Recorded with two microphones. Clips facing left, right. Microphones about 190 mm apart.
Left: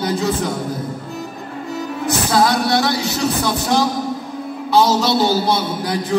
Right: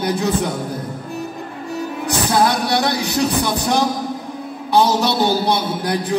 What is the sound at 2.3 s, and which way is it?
Music, 15° right (ahead or behind).